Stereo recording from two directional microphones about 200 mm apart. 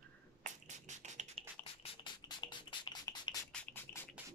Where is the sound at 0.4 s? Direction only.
35° right (ahead or behind).